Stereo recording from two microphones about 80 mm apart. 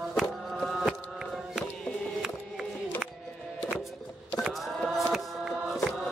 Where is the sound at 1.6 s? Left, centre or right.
Centre.